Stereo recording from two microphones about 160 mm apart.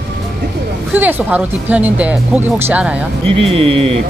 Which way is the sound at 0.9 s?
10° right (ahead or behind).